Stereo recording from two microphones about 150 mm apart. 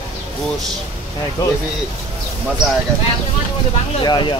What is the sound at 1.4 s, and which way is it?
Speech, 25° left (ahead or behind).